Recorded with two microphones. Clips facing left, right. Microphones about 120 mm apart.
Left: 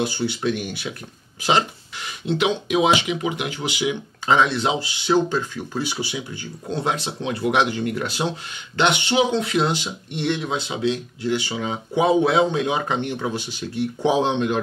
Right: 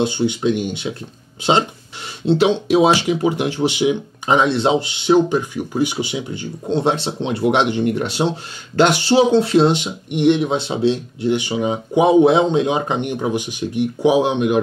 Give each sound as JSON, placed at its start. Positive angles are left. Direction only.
{"t": 0.0, "sound": "speech", "side_deg": -20}
{"t": 2.2, "sound": "speech", "side_deg": -30}
{"t": 8.7, "sound": "speech", "side_deg": -40}